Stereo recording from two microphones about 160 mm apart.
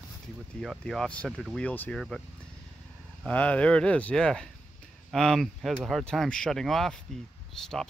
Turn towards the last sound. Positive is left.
turn(degrees=0)  # may be behind; listen again after turning